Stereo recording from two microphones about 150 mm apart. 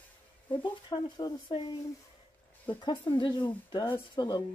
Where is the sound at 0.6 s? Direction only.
30° left (ahead or behind).